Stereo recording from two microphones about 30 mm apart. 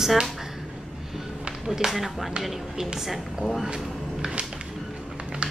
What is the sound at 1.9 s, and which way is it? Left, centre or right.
Speech, centre.